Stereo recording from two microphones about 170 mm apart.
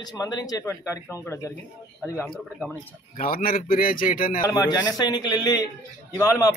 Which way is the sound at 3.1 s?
60° left (ahead or behind).